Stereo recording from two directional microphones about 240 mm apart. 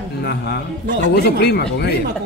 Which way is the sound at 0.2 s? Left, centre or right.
Left.